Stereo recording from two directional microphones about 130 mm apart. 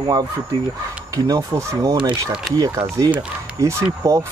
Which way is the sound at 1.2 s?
25° right (ahead or behind).